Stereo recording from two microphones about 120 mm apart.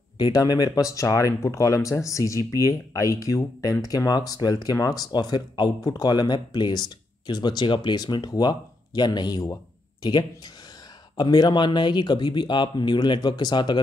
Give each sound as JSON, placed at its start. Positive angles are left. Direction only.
{"t": 0.2, "sound": "speech", "side_deg": 35}